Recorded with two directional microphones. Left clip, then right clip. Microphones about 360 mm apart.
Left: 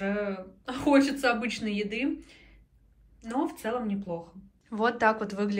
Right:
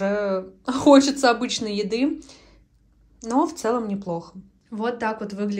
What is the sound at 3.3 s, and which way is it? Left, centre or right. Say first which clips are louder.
Speech: right 9 dB; centre.